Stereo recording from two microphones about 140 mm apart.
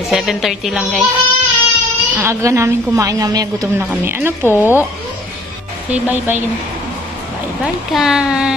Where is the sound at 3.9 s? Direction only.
15° right (ahead or behind).